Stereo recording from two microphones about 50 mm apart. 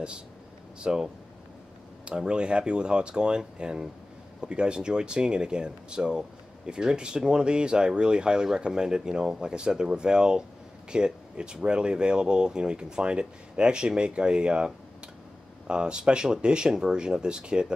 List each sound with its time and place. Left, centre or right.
0.7 s speech: centre